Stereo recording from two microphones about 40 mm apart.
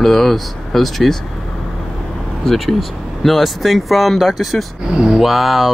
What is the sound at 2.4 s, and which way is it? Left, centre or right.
Speech, centre.